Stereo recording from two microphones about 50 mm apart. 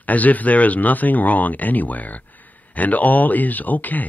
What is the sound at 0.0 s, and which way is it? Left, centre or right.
Speech, left.